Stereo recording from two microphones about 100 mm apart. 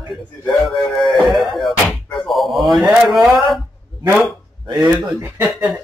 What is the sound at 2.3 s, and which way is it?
Speech, centre (ahead or behind).